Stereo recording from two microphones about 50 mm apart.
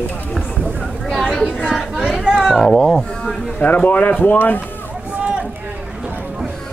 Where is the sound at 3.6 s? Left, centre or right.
Left.